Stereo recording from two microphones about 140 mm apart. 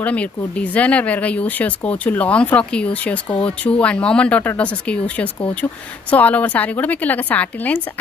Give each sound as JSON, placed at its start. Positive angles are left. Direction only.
{"t": 0.0, "sound": "speech", "side_deg": 10}